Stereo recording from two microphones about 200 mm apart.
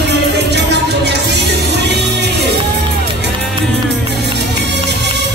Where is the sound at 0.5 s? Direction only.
60° right (ahead or behind).